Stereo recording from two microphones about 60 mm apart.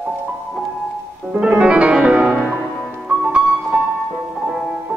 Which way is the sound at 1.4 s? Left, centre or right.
Centre.